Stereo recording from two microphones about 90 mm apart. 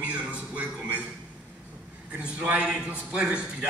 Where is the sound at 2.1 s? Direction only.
20° right (ahead or behind).